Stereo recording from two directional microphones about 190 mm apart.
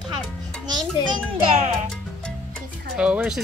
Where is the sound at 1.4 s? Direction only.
30° right (ahead or behind).